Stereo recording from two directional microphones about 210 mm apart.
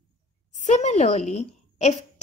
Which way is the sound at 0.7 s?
35° left (ahead or behind).